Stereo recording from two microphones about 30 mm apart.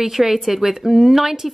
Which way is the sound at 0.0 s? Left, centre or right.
Centre.